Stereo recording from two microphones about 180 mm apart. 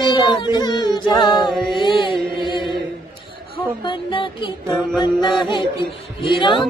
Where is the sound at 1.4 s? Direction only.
Centre (ahead or behind).